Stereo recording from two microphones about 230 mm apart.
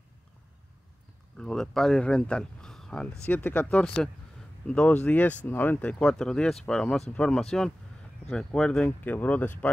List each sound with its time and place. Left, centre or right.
1.4 s speech: centre